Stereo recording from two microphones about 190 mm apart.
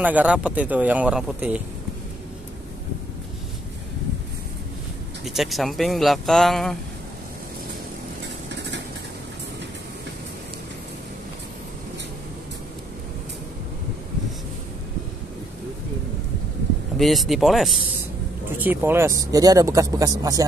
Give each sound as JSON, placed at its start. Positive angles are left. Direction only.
{"t": 0.0, "sound": "speech", "side_deg": -5}
{"t": 5.2, "sound": "speech", "side_deg": 0}
{"t": 8.5, "sound": "vehicle", "side_deg": -65}
{"t": 16.9, "sound": "speech", "side_deg": 0}